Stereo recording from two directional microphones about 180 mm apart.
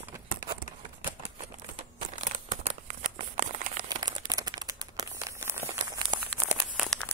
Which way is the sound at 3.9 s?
20° right (ahead or behind).